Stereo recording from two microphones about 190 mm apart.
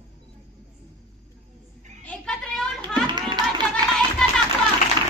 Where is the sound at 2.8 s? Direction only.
25° right (ahead or behind).